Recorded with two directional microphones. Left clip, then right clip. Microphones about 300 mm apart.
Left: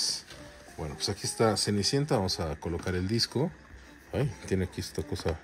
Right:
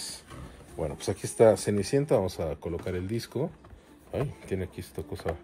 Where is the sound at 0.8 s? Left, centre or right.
Centre.